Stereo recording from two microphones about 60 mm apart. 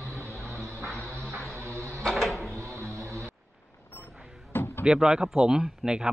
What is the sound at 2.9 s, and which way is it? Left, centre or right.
Vehicle, right.